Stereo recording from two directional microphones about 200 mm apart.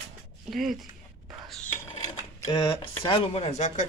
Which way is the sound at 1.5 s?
5° left (ahead or behind).